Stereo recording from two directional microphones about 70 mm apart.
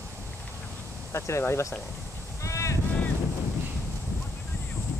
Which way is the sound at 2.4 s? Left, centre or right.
Left.